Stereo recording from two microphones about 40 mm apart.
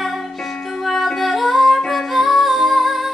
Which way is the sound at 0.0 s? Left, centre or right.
Centre.